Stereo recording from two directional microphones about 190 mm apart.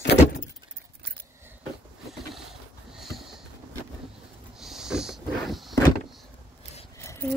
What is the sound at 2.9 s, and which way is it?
Sniff, centre (ahead or behind).